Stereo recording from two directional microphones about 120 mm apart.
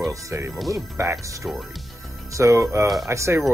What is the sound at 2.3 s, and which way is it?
Speech, 25° right (ahead or behind).